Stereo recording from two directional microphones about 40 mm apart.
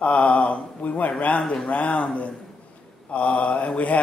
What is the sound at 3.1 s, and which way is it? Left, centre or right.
Speech, left.